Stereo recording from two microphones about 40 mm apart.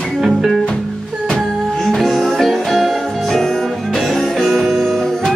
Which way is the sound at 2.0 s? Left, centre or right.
Centre.